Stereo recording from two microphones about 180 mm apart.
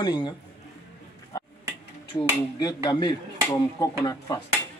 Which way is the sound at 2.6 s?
20° left (ahead or behind).